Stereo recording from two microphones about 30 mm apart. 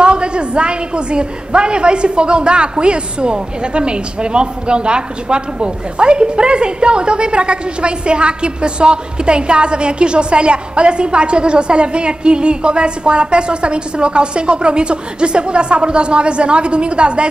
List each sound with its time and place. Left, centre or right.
0.0 s a woman's voice: right